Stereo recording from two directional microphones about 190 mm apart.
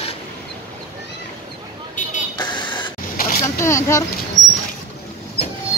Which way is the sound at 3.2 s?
50° left (ahead or behind).